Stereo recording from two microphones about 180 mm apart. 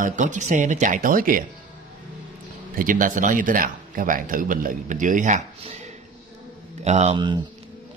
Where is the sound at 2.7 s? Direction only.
50° right (ahead or behind).